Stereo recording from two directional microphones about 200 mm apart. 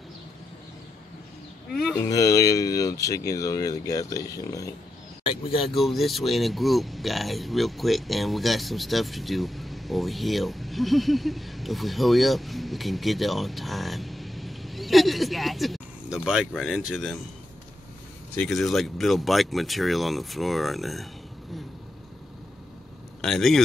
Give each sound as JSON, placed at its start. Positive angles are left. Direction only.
{"t": 1.7, "sound": "speech", "side_deg": 0}
{"t": 2.0, "sound": "speech", "side_deg": 15}
{"t": 5.2, "sound": "speech", "side_deg": 25}
{"t": 5.7, "sound": "speech", "side_deg": 0}
{"t": 18.3, "sound": "speech", "side_deg": 5}
{"t": 23.2, "sound": "speech", "side_deg": 0}